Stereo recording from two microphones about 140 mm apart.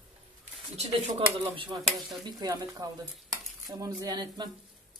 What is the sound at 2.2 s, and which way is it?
Cutlery, 30° right (ahead or behind).